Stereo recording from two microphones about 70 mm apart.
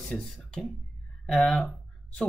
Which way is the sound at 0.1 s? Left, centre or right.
Centre.